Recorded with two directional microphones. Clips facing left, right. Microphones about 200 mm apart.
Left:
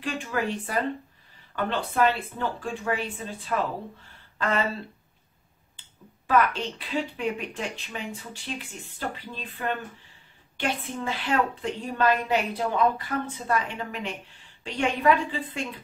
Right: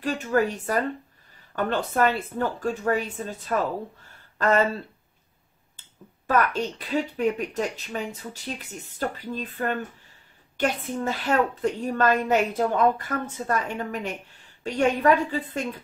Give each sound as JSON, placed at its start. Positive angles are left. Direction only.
{"t": 0.0, "sound": "a woman's voice", "side_deg": -45}
{"t": 5.8, "sound": "a woman's voice", "side_deg": -45}